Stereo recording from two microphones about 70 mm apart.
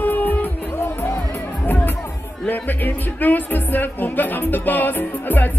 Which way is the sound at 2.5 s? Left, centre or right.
Left.